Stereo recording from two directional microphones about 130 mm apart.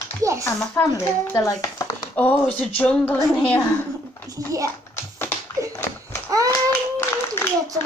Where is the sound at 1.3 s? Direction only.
25° left (ahead or behind).